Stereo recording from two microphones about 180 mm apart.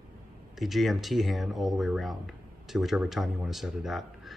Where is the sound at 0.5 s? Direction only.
Centre (ahead or behind).